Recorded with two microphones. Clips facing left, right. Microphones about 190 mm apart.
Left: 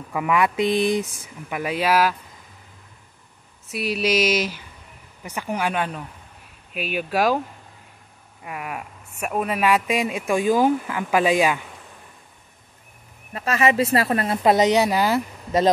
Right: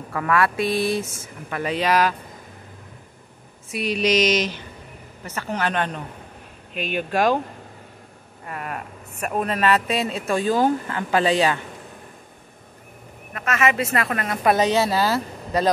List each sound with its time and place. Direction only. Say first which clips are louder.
0.1 s speech: even; 15° left (ahead or behind)
3.7 s speech: right 1 dB; 5° left (ahead or behind)
8.5 s speech: even; 10° left (ahead or behind)
13.3 s a woman's voice: left 2 dB; 30° left (ahead or behind)